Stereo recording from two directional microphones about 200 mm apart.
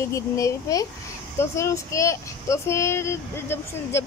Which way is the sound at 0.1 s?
15° left (ahead or behind).